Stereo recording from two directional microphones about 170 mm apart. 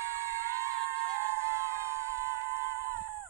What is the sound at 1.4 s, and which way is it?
Music, 15° right (ahead or behind).